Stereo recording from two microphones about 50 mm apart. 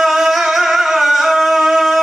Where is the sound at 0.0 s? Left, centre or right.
Centre.